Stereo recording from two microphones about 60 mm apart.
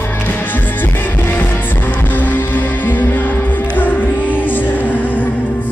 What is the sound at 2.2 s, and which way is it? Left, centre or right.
Music, left.